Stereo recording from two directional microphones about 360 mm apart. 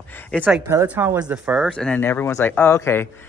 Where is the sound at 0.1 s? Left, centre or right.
Centre.